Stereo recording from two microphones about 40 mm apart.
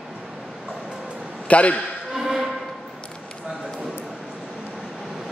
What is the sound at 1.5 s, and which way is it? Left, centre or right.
Speech, left.